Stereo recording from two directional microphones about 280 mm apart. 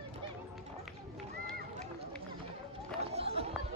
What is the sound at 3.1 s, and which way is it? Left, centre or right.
Chatter, right.